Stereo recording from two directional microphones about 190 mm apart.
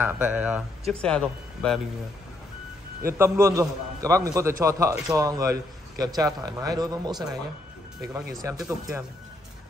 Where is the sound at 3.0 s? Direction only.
15° right (ahead or behind).